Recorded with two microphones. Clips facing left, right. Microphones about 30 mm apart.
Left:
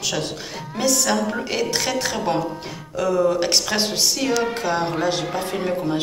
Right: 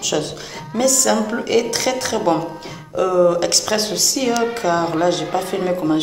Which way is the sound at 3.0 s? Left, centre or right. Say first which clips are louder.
Right 4 dB; right.